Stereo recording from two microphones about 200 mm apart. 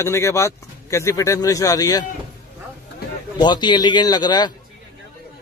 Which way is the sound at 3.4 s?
20° left (ahead or behind).